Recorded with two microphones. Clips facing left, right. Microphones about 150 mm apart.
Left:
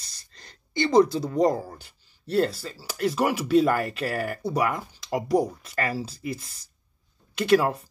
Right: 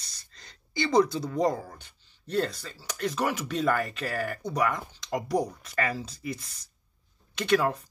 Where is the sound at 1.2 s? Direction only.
25° left (ahead or behind).